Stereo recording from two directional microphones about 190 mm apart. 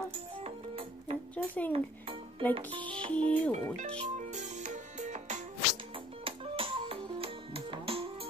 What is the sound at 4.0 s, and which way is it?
Music, 40° right (ahead or behind).